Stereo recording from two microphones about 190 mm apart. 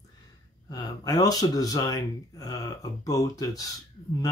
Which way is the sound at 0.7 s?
20° left (ahead or behind).